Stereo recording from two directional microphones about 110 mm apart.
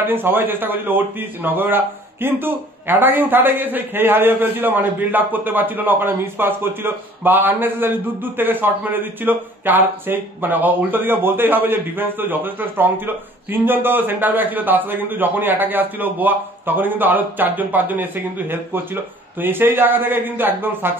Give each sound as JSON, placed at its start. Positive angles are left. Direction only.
{"t": 0.0, "sound": "a man's voice", "side_deg": -20}